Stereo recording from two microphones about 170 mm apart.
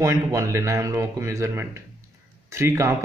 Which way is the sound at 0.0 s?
20° right (ahead or behind).